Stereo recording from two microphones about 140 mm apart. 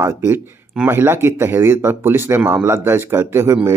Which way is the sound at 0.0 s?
20° right (ahead or behind).